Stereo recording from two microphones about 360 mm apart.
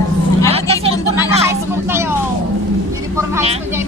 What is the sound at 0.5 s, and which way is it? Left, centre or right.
Vehicle, centre.